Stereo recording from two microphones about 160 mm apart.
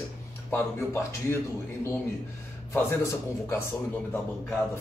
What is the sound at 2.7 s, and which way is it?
Speech, 15° left (ahead or behind).